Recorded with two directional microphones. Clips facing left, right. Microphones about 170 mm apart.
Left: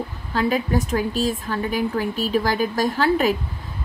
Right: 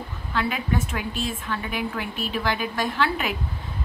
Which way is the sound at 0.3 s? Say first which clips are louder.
Left 5 dB; 40° left (ahead or behind).